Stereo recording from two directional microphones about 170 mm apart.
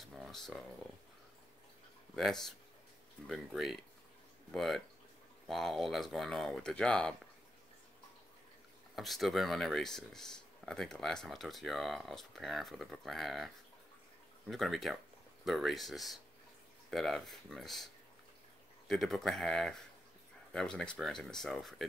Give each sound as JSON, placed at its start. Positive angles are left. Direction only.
{"t": 0.0, "sound": "speech", "side_deg": 0}
{"t": 2.1, "sound": "speech", "side_deg": 0}
{"t": 8.9, "sound": "speech", "side_deg": 0}
{"t": 14.5, "sound": "speech", "side_deg": 0}
{"t": 18.9, "sound": "speech", "side_deg": 0}